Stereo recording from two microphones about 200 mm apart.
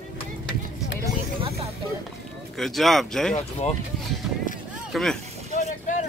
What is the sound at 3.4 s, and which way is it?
Speech, 35° left (ahead or behind).